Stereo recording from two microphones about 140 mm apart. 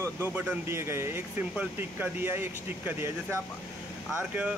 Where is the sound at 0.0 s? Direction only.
15° right (ahead or behind).